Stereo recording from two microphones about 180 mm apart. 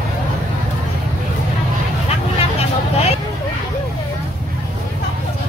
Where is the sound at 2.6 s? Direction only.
35° left (ahead or behind).